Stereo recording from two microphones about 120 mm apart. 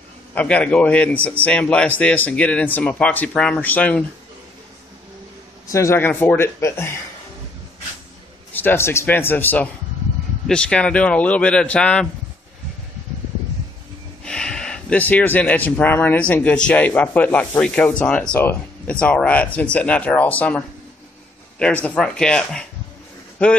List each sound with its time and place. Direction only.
0.3 s speech: 15° left (ahead or behind)
5.7 s speech: 25° left (ahead or behind)
8.5 s speech: 20° left (ahead or behind)
14.2 s speech: 5° left (ahead or behind)